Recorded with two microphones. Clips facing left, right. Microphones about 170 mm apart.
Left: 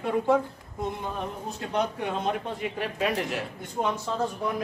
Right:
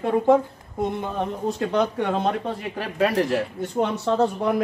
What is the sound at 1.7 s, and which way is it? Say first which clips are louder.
Speech: right 3 dB; 90° right.